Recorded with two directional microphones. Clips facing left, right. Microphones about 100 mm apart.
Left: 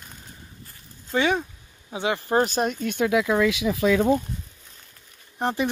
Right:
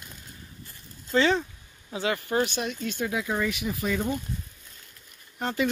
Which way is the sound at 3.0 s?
75° left (ahead or behind).